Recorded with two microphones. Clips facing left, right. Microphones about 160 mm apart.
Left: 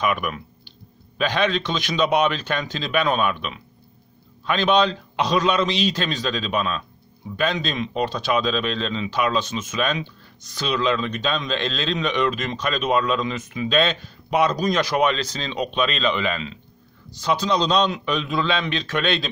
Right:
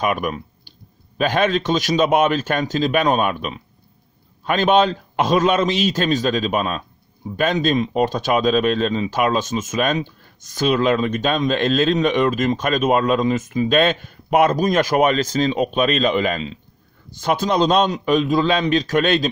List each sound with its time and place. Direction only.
0.0 s speech: 45° right (ahead or behind)
17.1 s speech: 50° right (ahead or behind)